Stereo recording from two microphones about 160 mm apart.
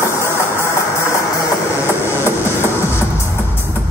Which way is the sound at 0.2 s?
15° left (ahead or behind).